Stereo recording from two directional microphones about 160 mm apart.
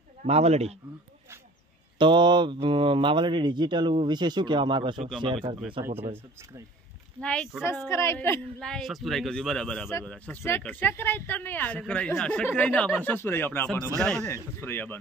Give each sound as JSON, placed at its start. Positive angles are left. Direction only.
{"t": 0.2, "sound": "speech", "side_deg": -40}
{"t": 2.0, "sound": "speech", "side_deg": -30}
{"t": 7.2, "sound": "speech", "side_deg": 5}
{"t": 8.5, "sound": "speech", "side_deg": 5}